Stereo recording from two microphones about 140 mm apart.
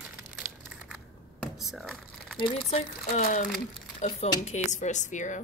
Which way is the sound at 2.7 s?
55° left (ahead or behind).